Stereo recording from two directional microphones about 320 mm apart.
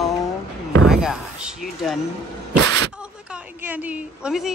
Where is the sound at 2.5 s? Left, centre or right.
Right.